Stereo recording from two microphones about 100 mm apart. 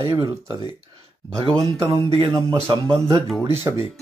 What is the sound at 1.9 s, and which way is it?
Speech, 65° right (ahead or behind).